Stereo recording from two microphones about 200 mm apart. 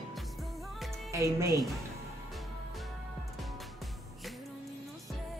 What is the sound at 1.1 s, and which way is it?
Speech, 15° right (ahead or behind).